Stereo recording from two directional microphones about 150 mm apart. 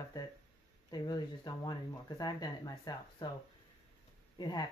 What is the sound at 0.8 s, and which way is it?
Speech, 25° left (ahead or behind).